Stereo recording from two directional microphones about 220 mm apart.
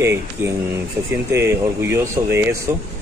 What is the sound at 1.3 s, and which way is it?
Speech, 10° right (ahead or behind).